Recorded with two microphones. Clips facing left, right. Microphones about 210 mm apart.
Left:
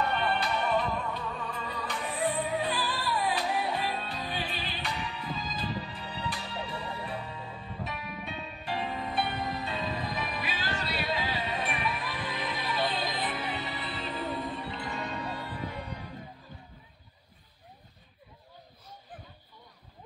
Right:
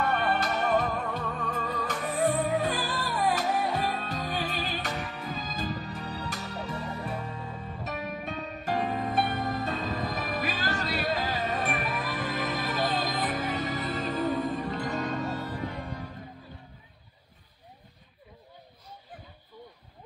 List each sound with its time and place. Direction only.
0.0 s music: 45° right (ahead or behind)